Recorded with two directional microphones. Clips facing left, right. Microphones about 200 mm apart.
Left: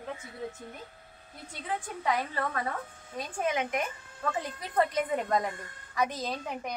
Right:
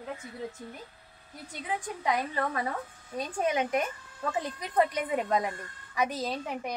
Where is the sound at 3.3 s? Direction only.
35° right (ahead or behind).